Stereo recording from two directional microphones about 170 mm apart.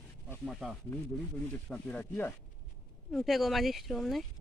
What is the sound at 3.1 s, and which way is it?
Speech, centre (ahead or behind).